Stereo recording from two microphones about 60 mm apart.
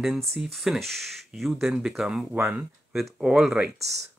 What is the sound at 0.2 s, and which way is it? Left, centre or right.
Speech, centre.